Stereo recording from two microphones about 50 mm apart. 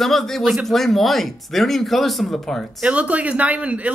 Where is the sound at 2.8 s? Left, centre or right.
Right.